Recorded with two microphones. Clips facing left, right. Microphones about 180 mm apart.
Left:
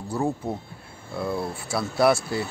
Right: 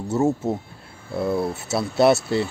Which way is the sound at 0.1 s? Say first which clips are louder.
Right 6 dB; 25° right (ahead or behind).